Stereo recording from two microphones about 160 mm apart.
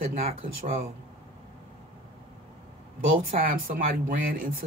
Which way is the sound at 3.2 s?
60° right (ahead or behind).